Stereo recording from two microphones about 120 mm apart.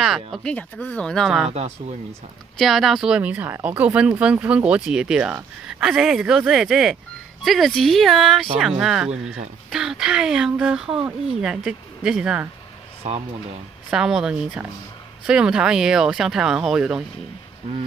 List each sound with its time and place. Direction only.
0.0 s speech: centre (ahead or behind)
1.5 s speech: 65° right (ahead or behind)
2.6 s speech: centre (ahead or behind)
13.0 s speech: 65° right (ahead or behind)
13.8 s speech: 5° right (ahead or behind)